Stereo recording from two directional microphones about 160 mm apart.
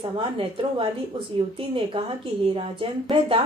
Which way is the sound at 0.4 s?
35° right (ahead or behind).